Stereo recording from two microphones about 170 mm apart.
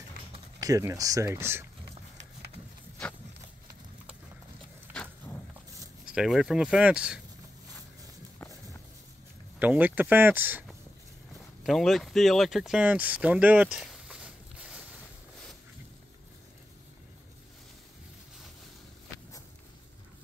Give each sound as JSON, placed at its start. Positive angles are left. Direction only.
{"t": 0.6, "sound": "speech", "side_deg": -20}
{"t": 6.1, "sound": "speech", "side_deg": 0}
{"t": 9.6, "sound": "speech", "side_deg": -10}
{"t": 11.6, "sound": "speech", "side_deg": 0}